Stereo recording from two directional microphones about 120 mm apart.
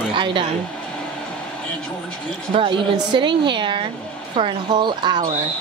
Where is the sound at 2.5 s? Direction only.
45° right (ahead or behind).